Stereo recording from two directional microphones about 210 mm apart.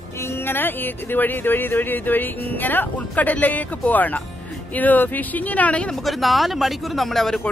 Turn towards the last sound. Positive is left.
turn(degrees=0)  # may be behind; listen again after turning